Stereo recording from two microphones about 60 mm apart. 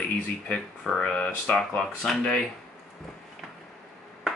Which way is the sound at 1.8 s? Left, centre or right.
Centre.